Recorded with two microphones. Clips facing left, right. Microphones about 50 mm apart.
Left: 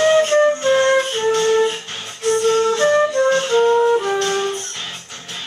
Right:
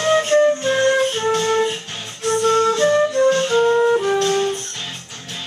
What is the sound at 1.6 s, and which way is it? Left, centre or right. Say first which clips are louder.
Music: left 2 dB; centre.